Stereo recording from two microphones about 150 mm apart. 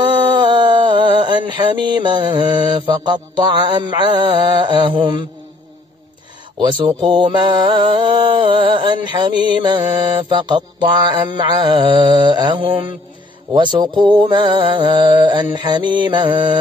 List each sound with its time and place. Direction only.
0.0 s music: 30° right (ahead or behind)
1.5 s mantra: 30° right (ahead or behind)
6.6 s mantra: 30° right (ahead or behind)